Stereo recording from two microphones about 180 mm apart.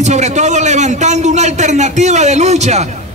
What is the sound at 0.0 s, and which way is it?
A man's voice, 40° right (ahead or behind).